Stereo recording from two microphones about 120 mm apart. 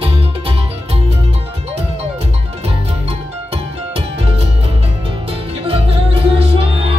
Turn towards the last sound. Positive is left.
turn(degrees=-55)  # may be behind; listen again after turning